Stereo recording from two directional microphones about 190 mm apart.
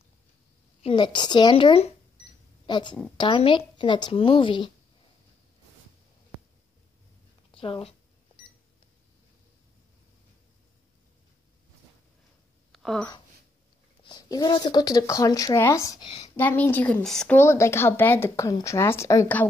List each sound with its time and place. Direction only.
0.8 s a woman's voice: 25° left (ahead or behind)
7.5 s a woman's voice: 30° left (ahead or behind)
12.7 s speech: 5° left (ahead or behind)
14.0 s speech: 20° left (ahead or behind)
16.3 s speech: 10° left (ahead or behind)